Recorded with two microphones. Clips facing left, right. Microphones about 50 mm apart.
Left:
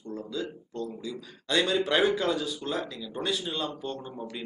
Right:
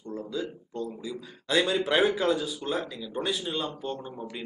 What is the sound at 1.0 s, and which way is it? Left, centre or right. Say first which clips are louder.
Speech: right 1 dB; centre.